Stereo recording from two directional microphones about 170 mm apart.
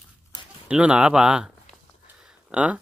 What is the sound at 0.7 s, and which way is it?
Speech, 5° right (ahead or behind).